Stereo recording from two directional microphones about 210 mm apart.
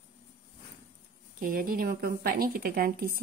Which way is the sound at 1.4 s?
45° right (ahead or behind).